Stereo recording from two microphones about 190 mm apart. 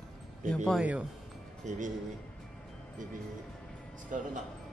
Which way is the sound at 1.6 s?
40° right (ahead or behind).